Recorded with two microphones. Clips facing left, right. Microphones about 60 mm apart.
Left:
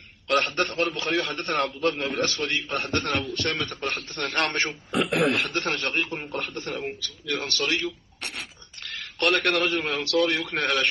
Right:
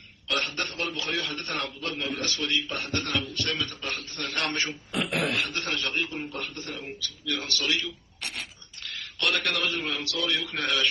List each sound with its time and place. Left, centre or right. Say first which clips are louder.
0.3 s a man's voice: left 6 dB; left